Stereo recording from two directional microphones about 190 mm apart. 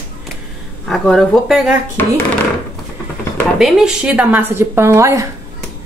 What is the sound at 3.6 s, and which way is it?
Speech, 5° right (ahead or behind).